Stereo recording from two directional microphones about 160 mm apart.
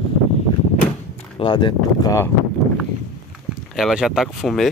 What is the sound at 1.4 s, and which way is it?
Speech, 30° left (ahead or behind).